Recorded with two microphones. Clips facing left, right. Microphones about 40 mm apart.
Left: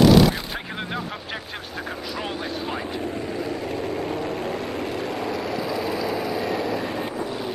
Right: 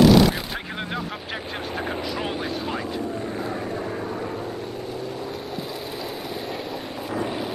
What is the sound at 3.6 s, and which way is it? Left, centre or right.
Vehicle, left.